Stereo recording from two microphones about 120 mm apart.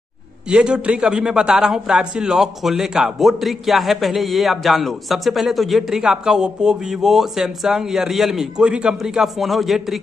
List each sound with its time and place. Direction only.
0.5 s a man's voice: 5° right (ahead or behind)